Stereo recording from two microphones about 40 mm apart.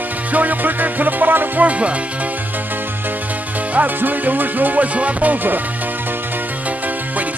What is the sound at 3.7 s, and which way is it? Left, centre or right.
Music, right.